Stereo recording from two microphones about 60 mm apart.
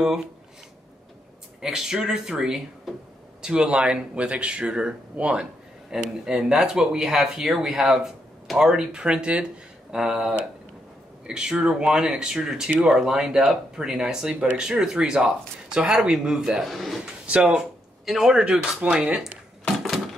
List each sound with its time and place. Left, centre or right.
1.6 s speech: centre
18.4 s speech: right